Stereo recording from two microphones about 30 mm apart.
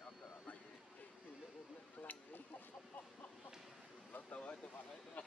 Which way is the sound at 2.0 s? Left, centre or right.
Left.